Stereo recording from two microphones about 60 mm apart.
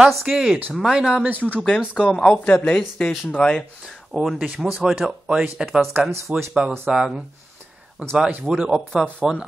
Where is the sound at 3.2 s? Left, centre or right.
Centre.